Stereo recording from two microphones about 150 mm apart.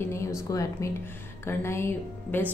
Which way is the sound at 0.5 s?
20° left (ahead or behind).